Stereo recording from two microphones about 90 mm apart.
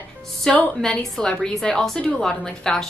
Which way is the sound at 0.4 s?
5° left (ahead or behind).